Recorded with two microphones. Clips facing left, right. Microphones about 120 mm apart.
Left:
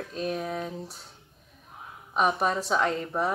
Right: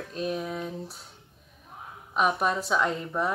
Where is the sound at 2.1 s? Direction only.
Centre (ahead or behind).